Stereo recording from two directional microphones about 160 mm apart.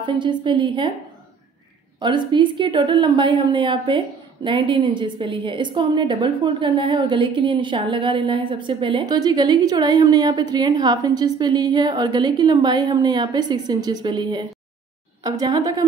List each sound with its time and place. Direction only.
0.0 s a woman's voice: 30° right (ahead or behind)
2.0 s a woman's voice: 30° right (ahead or behind)